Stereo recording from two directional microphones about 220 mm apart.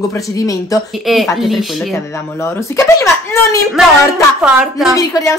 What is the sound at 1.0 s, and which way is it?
Speech, centre (ahead or behind).